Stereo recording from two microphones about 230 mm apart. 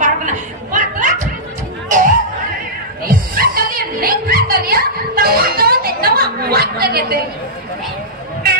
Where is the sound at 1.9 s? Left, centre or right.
Right.